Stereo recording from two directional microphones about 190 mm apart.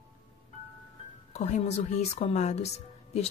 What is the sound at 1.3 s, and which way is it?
Speech, 35° left (ahead or behind).